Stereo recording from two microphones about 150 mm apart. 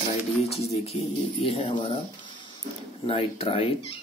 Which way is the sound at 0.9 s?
45° left (ahead or behind).